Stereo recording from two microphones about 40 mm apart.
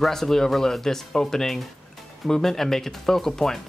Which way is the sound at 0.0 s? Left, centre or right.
Centre.